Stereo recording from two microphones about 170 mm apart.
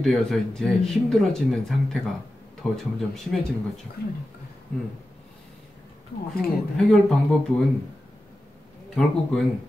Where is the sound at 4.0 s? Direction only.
65° left (ahead or behind).